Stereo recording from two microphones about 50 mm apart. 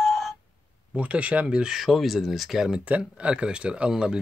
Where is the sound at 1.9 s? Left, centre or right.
Centre.